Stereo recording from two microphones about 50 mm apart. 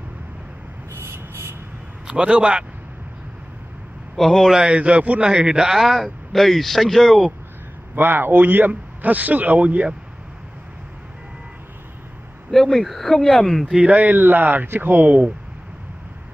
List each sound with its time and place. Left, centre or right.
0.9 s a sound: right
2.0 s a man's voice: right
4.2 s a man's voice: centre
4.6 s a man's voice: right; by 7.2 s centre
7.9 s a man's voice: right
12.4 s a man's voice: centre
13.7 s a man's voice: right